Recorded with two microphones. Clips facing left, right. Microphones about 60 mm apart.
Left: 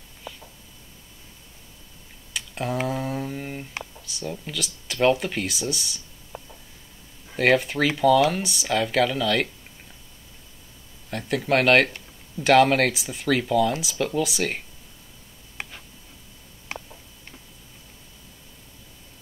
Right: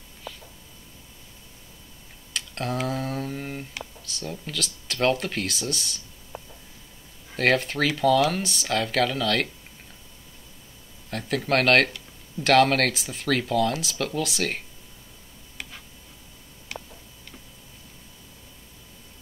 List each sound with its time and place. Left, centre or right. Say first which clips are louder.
0.3 s a sound: even; centre
2.3 s typing: left 1 dB; centre
2.9 s mantra: left 1 dB; centre
4.0 s speech: left 1 dB; centre
11.1 s speech: left 2 dB; centre
15.6 s tick: left 3 dB; left
16.7 s tick-tock: left 2 dB; left